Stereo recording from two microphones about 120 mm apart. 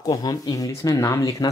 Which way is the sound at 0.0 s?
30° left (ahead or behind).